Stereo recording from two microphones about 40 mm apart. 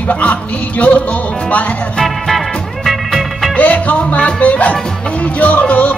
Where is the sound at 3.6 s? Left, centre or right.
Left.